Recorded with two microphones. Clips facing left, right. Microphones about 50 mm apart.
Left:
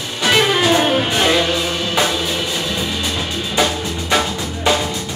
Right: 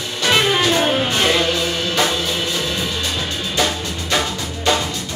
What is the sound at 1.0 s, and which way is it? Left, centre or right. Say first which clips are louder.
Music: left 1 dB; centre.